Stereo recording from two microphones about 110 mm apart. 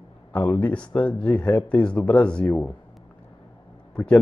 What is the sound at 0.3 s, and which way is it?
Speech, 20° left (ahead or behind).